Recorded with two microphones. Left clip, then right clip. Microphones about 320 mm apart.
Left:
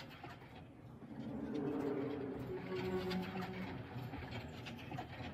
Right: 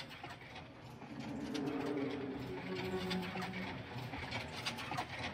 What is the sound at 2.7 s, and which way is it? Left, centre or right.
Music, centre.